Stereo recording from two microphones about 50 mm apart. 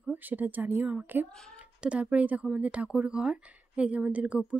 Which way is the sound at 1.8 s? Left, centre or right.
Right.